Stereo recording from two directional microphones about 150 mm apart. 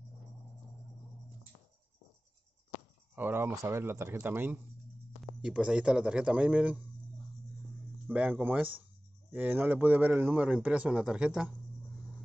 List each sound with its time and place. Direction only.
3.2 s speech: 15° right (ahead or behind)
8.1 s speech: 10° right (ahead or behind)